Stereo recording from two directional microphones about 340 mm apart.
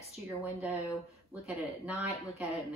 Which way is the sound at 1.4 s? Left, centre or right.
Centre.